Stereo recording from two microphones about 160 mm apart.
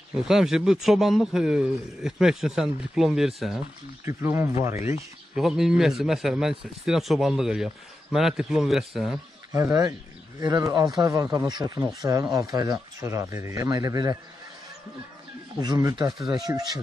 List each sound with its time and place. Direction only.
0.2 s a man's voice: 5° right (ahead or behind)
4.0 s speech: 15° right (ahead or behind)
5.3 s a man's voice: centre (ahead or behind)
9.5 s speech: 20° right (ahead or behind)
15.6 s speech: 25° right (ahead or behind)